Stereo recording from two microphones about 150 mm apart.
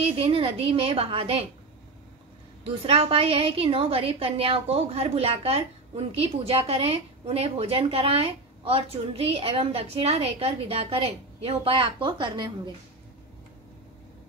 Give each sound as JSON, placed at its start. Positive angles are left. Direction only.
{"t": 0.0, "sound": "a woman's voice", "side_deg": -40}
{"t": 2.6, "sound": "a woman's voice", "side_deg": -40}